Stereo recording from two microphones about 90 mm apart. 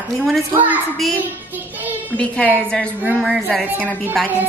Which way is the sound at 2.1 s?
15° left (ahead or behind).